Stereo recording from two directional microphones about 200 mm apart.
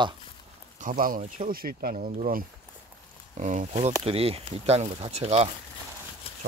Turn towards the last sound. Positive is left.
turn(degrees=-30)  # may be behind; listen again after turning